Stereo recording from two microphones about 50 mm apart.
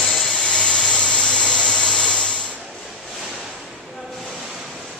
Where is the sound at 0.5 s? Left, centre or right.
Left.